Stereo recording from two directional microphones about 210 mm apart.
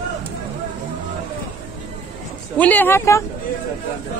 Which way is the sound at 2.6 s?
10° left (ahead or behind).